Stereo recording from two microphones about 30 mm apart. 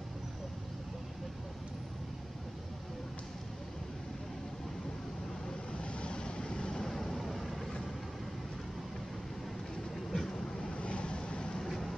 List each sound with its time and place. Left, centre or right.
5.7 s vehicle: left
6.8 s vehicle: centre
10.1 s vehicle: centre
10.7 s vehicle: left
11.6 s vehicle: centre